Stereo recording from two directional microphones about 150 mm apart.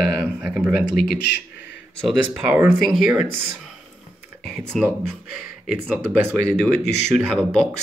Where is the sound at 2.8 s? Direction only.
Centre (ahead or behind).